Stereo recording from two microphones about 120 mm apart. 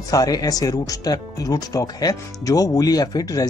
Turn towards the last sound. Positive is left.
turn(degrees=30)  # may be behind; listen again after turning